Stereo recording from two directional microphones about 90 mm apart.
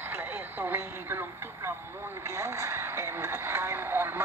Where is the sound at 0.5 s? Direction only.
25° right (ahead or behind).